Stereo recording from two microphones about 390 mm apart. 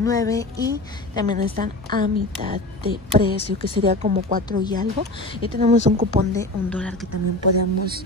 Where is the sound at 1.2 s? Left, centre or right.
Right.